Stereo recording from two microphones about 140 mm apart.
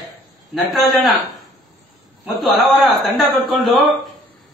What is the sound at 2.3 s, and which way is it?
A man's voice, centre (ahead or behind).